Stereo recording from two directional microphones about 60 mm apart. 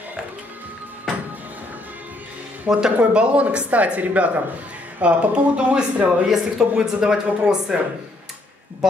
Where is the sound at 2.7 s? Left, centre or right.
Centre.